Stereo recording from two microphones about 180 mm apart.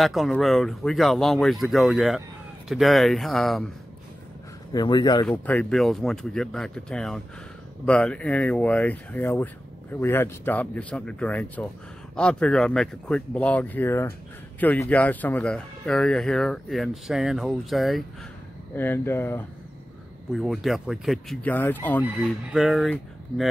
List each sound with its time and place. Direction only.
0.0 s speech: centre (ahead or behind)
4.7 s speech: 25° left (ahead or behind)
5.4 s speech: 10° left (ahead or behind)
18.8 s speech: 10° left (ahead or behind)
20.3 s speech: centre (ahead or behind)
22.0 s speech: 5° right (ahead or behind)